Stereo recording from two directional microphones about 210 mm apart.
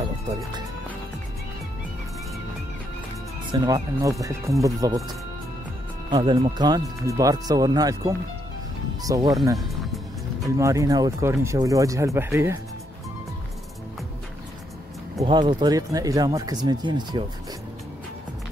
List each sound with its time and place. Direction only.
0.3 s speech: 15° right (ahead or behind)
3.5 s speech: 15° right (ahead or behind)
10.6 s speech: 15° right (ahead or behind)
15.1 s speech: 20° right (ahead or behind)